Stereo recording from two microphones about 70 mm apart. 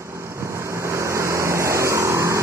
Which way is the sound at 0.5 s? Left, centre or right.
Right.